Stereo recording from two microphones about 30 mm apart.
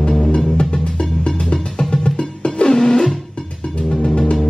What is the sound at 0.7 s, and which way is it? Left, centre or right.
Music, left.